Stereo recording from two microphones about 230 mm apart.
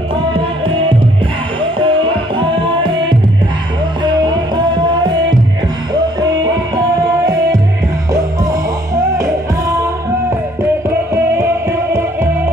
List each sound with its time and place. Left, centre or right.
1.6 s music: right
8.1 s music: centre
11.3 s music: centre